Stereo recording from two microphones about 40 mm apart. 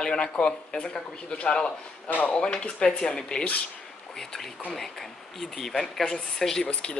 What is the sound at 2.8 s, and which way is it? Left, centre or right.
Speech, left.